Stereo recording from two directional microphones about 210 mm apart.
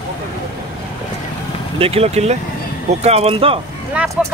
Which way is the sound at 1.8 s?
30° right (ahead or behind).